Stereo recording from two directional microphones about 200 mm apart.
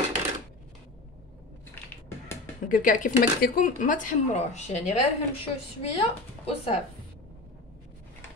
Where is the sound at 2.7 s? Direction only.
40° left (ahead or behind).